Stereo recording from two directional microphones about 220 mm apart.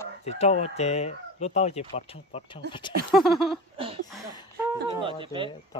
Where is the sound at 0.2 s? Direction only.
30° left (ahead or behind).